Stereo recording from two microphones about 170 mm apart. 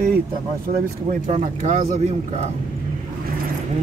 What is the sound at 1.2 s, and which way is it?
Speech, 45° right (ahead or behind).